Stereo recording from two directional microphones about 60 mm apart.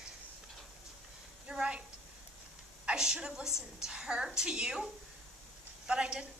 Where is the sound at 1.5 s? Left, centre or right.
Centre.